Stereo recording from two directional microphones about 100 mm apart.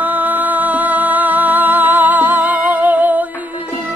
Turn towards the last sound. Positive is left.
turn(degrees=-15)  # may be behind; listen again after turning